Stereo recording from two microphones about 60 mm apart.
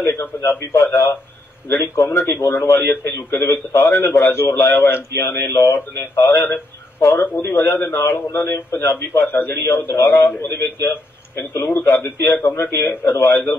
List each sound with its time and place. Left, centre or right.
0.0 s a man's voice: left